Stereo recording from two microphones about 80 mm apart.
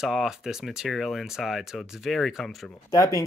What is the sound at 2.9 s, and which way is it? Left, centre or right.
Speech, left.